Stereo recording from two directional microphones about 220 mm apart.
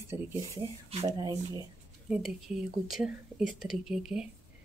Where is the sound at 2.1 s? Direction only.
Centre (ahead or behind).